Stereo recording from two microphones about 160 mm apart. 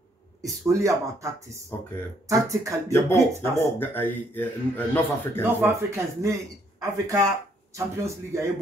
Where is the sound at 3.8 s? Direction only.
10° left (ahead or behind).